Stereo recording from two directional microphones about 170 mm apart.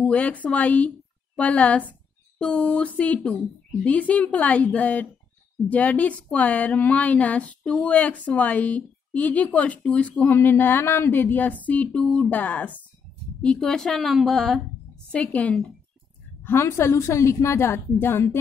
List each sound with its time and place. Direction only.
0.0 s a woman's voice: 5° left (ahead or behind)